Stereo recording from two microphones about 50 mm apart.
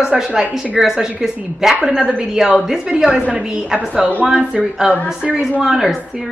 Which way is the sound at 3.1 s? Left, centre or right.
Right.